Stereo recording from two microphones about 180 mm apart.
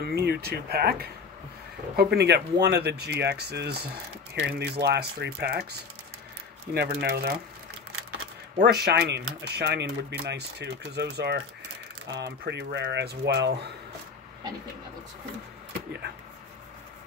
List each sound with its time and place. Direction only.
0.0 s speech: 65° right (ahead or behind)
8.6 s speech: 60° right (ahead or behind)